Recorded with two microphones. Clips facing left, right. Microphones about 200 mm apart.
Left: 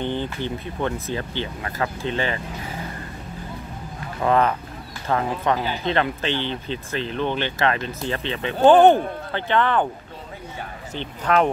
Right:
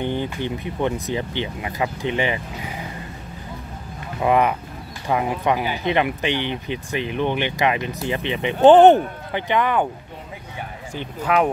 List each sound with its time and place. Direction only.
0.0 s speech: 15° right (ahead or behind)
4.2 s speech: 15° right (ahead or behind)
11.0 s speech: 10° right (ahead or behind)